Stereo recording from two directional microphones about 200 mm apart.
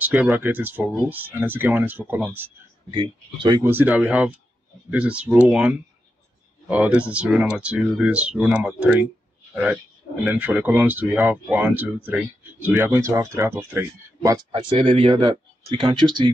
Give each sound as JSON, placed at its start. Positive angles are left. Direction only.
{"t": 0.0, "sound": "speech", "side_deg": -10}
{"t": 2.9, "sound": "speech", "side_deg": -20}
{"t": 10.2, "sound": "speech", "side_deg": -5}
{"t": 14.5, "sound": "speech", "side_deg": -25}